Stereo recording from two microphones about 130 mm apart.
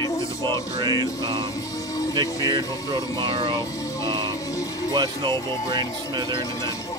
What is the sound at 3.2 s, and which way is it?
Speech, 40° right (ahead or behind).